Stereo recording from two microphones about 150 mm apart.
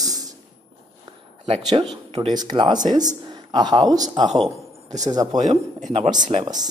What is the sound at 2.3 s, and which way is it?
A man's voice, 25° right (ahead or behind).